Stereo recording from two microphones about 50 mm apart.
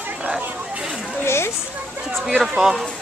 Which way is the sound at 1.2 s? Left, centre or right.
Left.